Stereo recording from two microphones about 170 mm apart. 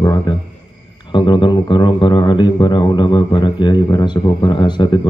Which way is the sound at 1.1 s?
25° left (ahead or behind).